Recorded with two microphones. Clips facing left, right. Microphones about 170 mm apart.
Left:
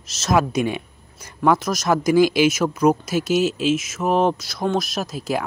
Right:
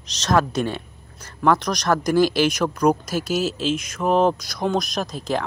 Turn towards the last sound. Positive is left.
turn(degrees=5)  # may be behind; listen again after turning